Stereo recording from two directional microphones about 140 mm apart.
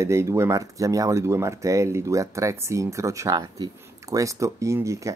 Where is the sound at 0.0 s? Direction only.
20° right (ahead or behind).